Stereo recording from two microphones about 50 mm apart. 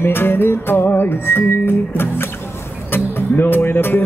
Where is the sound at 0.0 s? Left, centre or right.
Left.